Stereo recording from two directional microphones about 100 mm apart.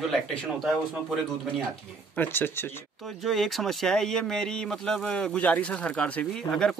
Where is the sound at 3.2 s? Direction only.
Centre (ahead or behind).